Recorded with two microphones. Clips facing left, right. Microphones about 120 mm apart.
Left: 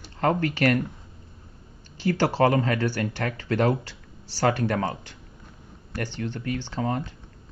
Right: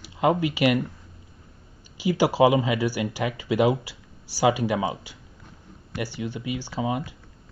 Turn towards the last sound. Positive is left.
turn(degrees=-10)  # may be behind; listen again after turning